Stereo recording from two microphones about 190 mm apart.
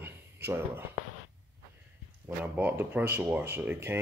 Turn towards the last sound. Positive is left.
turn(degrees=-10)  # may be behind; listen again after turning